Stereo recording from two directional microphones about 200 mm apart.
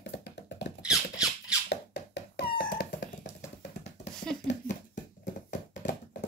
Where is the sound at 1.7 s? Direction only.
60° left (ahead or behind).